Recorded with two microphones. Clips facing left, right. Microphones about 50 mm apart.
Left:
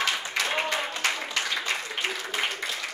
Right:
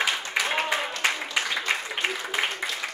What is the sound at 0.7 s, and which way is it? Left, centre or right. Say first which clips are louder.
Applause: right 2 dB; centre.